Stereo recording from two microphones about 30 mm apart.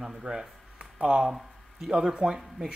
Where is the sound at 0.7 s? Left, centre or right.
Right.